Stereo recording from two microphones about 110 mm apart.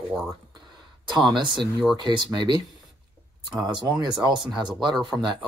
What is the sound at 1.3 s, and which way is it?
Speech, 45° right (ahead or behind).